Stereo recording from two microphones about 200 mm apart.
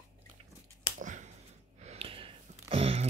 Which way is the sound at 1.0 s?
40° right (ahead or behind).